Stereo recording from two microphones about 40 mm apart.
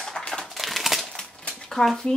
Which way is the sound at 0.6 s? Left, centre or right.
Centre.